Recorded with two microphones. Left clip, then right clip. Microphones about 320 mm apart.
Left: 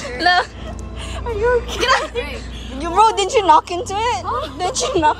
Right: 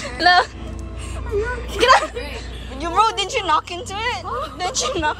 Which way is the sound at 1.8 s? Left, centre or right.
Centre.